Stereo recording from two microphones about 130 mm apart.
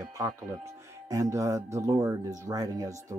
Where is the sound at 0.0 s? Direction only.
25° right (ahead or behind).